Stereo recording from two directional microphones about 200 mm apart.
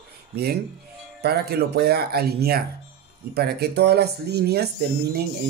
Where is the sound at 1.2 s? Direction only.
55° right (ahead or behind).